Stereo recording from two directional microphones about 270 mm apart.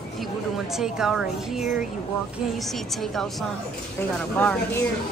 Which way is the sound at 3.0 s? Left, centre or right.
Centre.